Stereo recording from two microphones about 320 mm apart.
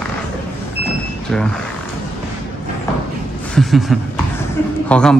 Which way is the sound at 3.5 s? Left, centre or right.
Centre.